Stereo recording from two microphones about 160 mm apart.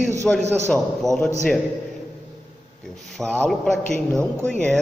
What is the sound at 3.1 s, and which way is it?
Speech, 5° left (ahead or behind).